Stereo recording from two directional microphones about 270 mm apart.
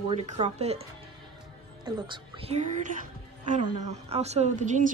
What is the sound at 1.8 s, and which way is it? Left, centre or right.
A woman's voice, centre.